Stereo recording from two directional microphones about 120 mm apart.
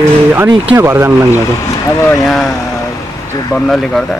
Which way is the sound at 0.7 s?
25° right (ahead or behind).